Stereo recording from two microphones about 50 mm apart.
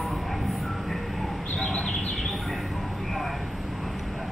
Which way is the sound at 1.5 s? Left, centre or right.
Centre.